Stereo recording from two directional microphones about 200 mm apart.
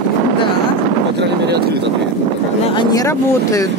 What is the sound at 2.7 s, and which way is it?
Speech, 20° left (ahead or behind).